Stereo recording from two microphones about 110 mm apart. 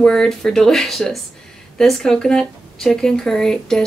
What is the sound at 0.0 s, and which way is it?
A woman's voice, 5° left (ahead or behind).